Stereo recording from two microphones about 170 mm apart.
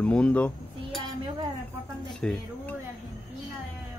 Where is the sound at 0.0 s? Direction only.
5° left (ahead or behind).